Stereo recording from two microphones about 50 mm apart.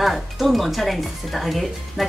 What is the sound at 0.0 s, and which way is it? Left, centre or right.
Speech, centre.